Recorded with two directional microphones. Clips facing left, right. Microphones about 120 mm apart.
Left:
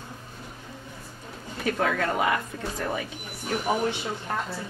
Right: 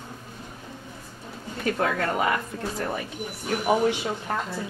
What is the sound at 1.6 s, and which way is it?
Speech, centre (ahead or behind).